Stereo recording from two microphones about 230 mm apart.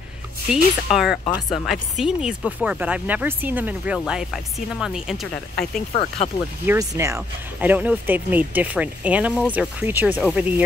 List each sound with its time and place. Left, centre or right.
0.5 s speech: centre
5.6 s speech: left
6.6 s speech: centre